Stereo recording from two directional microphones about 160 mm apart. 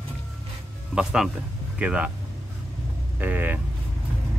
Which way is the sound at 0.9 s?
5° right (ahead or behind).